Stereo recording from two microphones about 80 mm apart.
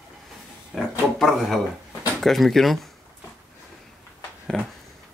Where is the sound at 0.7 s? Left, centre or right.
Centre.